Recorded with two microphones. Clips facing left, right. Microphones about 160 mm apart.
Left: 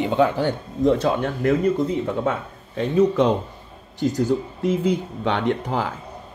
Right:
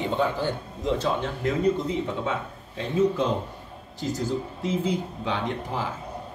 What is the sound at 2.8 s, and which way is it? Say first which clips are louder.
Speech: left 5 dB; 70° left (ahead or behind).